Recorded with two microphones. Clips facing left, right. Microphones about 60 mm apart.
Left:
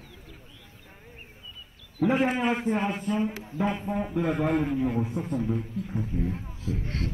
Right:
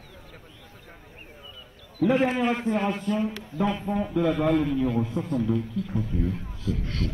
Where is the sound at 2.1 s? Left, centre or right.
Left.